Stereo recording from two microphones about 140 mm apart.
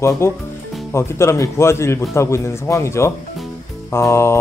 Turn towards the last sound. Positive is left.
turn(degrees=20)  # may be behind; listen again after turning